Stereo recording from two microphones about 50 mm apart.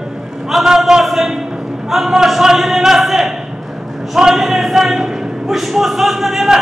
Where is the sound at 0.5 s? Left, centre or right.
Centre.